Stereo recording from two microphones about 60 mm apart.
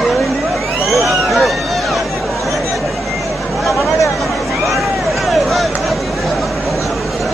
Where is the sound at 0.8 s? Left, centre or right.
Centre.